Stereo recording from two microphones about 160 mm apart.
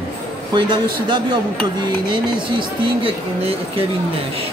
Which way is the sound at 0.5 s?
30° right (ahead or behind).